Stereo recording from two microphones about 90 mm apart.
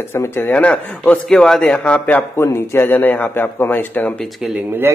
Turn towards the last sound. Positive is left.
turn(degrees=-25)  # may be behind; listen again after turning